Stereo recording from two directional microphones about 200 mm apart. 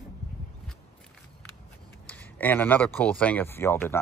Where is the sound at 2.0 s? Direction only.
10° left (ahead or behind).